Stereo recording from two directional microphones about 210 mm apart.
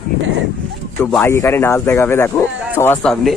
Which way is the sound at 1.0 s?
10° left (ahead or behind).